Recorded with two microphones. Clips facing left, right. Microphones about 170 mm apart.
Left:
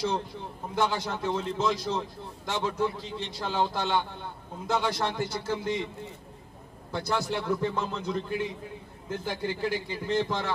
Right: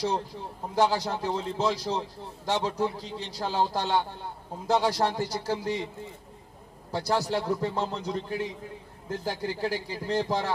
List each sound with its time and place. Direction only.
0.0 s a man's voice: 35° right (ahead or behind)
6.9 s a man's voice: 35° right (ahead or behind)